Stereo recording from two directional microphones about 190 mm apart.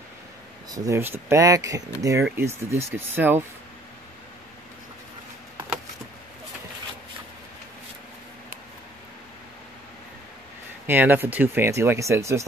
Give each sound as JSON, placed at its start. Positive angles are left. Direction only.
{"t": 0.7, "sound": "speech", "side_deg": -20}
{"t": 10.9, "sound": "speech", "side_deg": -10}